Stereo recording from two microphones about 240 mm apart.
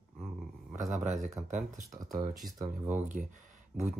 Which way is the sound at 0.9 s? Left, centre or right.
Right.